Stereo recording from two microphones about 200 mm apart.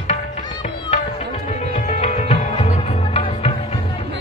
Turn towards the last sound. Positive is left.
turn(degrees=30)  # may be behind; listen again after turning